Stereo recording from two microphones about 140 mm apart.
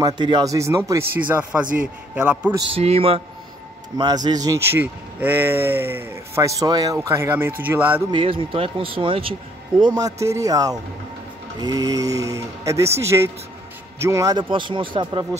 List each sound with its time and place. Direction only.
0.0 s speech: 30° right (ahead or behind); by 2.5 s 10° right (ahead or behind)
2.8 s a man's voice: 45° right (ahead or behind)
4.0 s speech: 30° right (ahead or behind)
4.6 s speech: 15° right (ahead or behind)
8.1 s speech: 40° right (ahead or behind)